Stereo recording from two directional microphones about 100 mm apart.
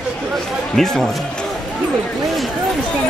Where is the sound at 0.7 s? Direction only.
5° left (ahead or behind).